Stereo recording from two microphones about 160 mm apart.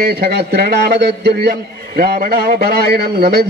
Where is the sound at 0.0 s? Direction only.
80° right.